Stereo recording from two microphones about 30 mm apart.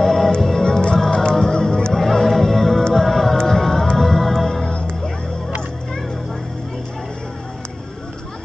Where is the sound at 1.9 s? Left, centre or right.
Centre.